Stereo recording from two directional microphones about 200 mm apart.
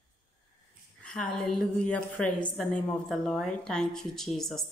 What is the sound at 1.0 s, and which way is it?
A woman's voice, 5° left (ahead or behind).